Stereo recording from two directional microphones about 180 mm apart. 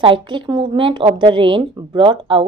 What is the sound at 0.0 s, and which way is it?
A woman's voice, 25° right (ahead or behind).